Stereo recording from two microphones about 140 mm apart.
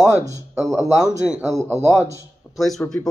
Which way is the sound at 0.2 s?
20° right (ahead or behind).